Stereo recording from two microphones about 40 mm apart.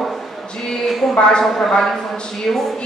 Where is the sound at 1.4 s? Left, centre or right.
Centre.